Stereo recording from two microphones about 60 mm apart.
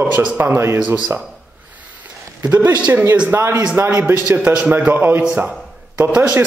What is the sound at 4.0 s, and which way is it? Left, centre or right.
A man's voice, right.